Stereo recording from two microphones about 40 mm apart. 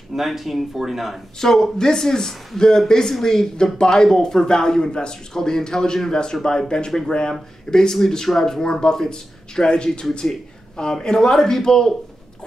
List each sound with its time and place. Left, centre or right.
0.1 s speech: centre
1.4 s speech: centre
7.3 s speech: centre